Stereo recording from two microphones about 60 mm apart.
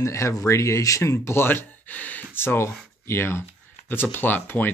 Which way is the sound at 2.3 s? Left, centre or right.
Left.